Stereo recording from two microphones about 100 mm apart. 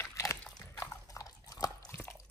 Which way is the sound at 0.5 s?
40° left (ahead or behind).